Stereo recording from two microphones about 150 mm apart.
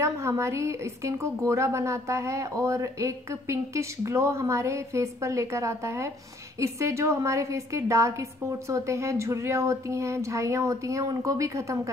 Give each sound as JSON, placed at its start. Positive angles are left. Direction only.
{"t": 0.0, "sound": "a woman's voice", "side_deg": -20}